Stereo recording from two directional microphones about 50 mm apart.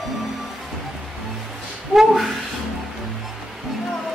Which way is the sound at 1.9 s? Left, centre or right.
Centre.